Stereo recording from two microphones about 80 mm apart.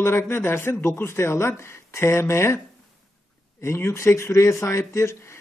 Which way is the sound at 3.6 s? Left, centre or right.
Left.